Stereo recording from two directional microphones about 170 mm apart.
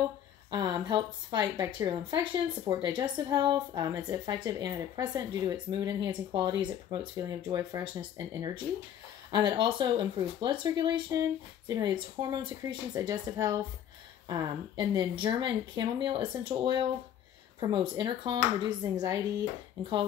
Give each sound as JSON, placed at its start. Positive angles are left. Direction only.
{"t": 0.5, "sound": "a woman's voice", "side_deg": -25}